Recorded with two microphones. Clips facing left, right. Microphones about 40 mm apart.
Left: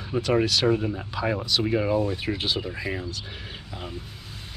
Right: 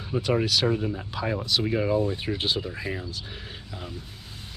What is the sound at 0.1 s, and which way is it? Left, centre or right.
Speech, centre.